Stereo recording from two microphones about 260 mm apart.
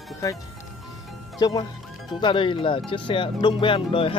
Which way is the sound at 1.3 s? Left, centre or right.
Centre.